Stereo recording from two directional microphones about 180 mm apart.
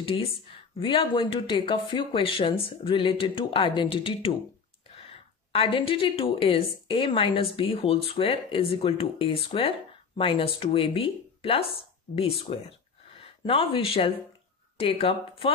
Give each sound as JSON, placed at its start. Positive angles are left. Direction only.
{"t": 0.0, "sound": "a woman's voice", "side_deg": 30}